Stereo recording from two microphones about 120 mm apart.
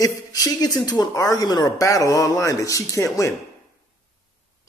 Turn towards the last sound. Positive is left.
turn(degrees=25)  # may be behind; listen again after turning